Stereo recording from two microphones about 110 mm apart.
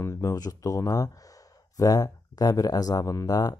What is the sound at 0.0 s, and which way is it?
Speech, 30° left (ahead or behind).